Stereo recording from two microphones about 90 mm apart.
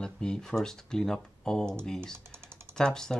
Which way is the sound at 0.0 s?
10° left (ahead or behind).